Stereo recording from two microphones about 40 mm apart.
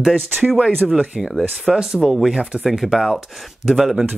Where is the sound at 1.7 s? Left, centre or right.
Centre.